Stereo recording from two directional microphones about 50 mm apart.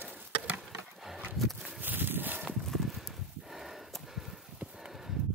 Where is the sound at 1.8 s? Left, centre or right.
Right.